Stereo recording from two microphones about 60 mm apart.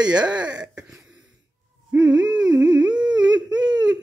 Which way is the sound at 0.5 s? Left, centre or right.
Centre.